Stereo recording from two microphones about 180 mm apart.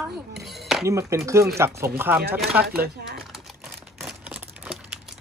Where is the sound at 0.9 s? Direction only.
15° right (ahead or behind).